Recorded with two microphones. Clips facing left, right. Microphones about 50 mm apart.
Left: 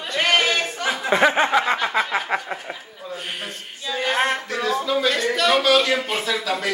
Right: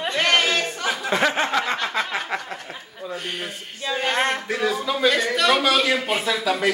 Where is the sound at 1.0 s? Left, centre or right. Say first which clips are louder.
Left 4 dB; centre.